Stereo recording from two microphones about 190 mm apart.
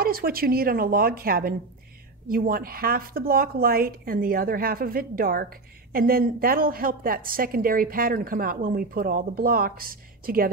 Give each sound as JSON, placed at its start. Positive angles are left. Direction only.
{"t": 0.0, "sound": "speech", "side_deg": -50}